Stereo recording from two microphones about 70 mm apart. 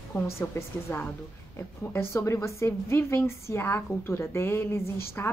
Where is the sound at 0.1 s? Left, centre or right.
Left.